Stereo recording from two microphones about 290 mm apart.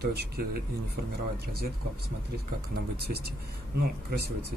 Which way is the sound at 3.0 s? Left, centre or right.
Right.